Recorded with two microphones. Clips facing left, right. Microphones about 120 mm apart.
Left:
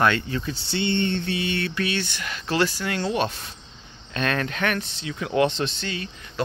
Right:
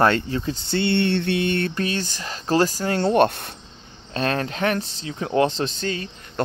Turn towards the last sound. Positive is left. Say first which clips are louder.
# right 3 dB
turn(degrees=-40)  # may be behind; listen again after turning